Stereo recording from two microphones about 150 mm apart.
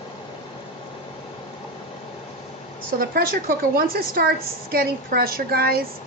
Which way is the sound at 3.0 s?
80° right.